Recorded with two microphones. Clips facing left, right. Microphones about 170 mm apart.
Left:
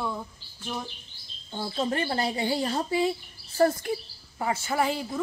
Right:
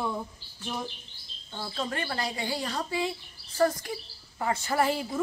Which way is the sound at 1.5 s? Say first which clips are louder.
Left 5 dB; 25° left (ahead or behind).